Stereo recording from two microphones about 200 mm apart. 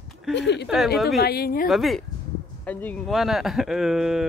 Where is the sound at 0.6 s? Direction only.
Centre (ahead or behind).